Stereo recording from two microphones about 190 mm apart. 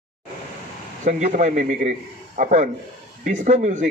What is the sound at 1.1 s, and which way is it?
A man's voice, 40° right (ahead or behind).